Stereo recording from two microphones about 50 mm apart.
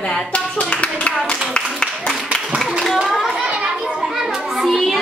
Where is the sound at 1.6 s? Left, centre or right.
Left.